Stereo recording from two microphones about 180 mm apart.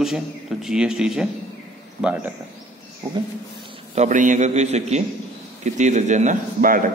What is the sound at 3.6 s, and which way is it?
A man's voice, 40° right (ahead or behind).